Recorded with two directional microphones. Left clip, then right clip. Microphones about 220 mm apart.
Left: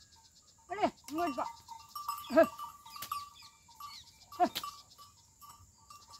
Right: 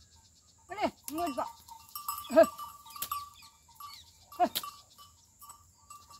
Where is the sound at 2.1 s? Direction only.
50° right (ahead or behind).